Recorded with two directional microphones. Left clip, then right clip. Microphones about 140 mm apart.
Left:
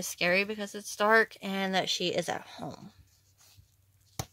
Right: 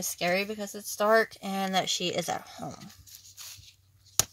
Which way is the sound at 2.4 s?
30° left (ahead or behind).